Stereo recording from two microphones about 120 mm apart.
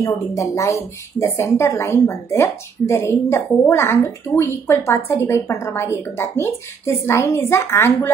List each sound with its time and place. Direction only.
0.0 s a woman's voice: 25° left (ahead or behind)